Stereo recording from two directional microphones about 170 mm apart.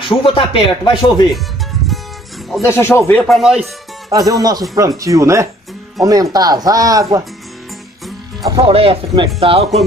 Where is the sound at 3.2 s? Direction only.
Centre (ahead or behind).